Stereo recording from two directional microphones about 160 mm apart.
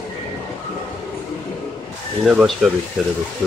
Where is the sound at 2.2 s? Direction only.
5° right (ahead or behind).